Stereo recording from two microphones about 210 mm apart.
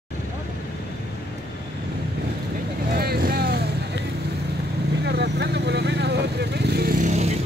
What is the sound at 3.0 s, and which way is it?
Vehicle, 45° right (ahead or behind).